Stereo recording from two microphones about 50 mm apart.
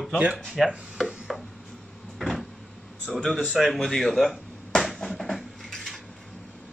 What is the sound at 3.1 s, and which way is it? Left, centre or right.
Speech, centre.